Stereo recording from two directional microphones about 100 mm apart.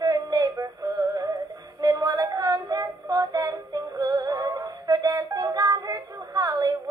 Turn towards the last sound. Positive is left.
turn(degrees=-40)  # may be behind; listen again after turning